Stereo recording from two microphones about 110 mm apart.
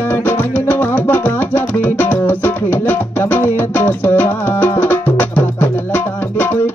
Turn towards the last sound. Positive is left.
turn(degrees=20)  # may be behind; listen again after turning